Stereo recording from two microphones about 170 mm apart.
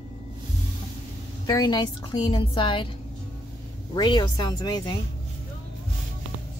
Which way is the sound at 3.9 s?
25° left (ahead or behind).